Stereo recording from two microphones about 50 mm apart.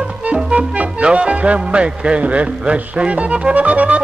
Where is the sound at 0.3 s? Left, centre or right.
Right.